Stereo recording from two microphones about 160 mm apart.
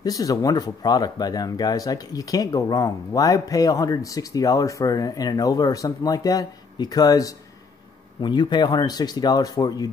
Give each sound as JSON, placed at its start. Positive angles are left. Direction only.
{"t": 0.0, "sound": "speech", "side_deg": 20}